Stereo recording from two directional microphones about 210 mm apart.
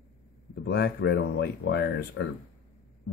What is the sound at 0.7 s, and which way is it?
Speech, 50° left (ahead or behind).